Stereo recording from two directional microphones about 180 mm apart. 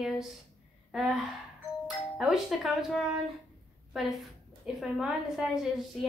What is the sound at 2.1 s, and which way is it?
A woman's voice, centre (ahead or behind).